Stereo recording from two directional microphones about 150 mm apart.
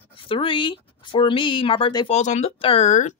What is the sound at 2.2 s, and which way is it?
Speech, 50° left (ahead or behind).